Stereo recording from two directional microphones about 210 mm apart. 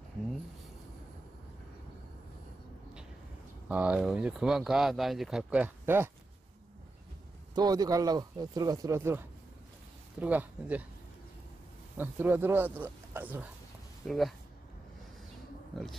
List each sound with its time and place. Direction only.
3.6 s speech: 5° right (ahead or behind)
7.5 s speech: 20° right (ahead or behind)
12.0 s speech: 10° right (ahead or behind)